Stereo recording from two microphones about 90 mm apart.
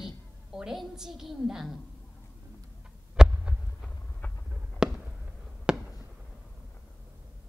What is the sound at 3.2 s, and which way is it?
Heart sounds, 10° right (ahead or behind).